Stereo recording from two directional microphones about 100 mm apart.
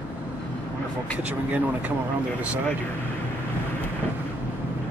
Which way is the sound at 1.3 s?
15° right (ahead or behind).